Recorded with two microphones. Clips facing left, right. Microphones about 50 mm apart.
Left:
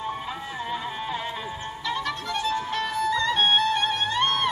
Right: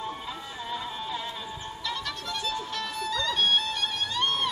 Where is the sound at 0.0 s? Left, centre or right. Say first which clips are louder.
Left 4 dB; left.